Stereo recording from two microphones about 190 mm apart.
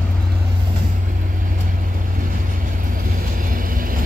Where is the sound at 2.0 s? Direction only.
45° right (ahead or behind).